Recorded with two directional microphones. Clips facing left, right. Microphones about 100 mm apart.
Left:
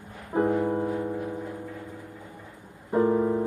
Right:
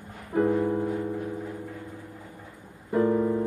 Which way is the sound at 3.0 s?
20° left (ahead or behind).